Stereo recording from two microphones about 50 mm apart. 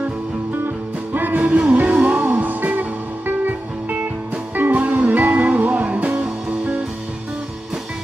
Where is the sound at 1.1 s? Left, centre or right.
Right.